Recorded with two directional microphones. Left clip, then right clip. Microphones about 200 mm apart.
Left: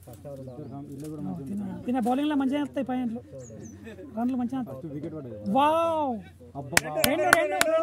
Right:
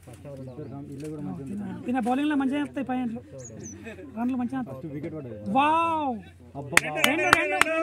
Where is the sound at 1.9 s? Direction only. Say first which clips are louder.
Right 1 dB; 65° left (ahead or behind).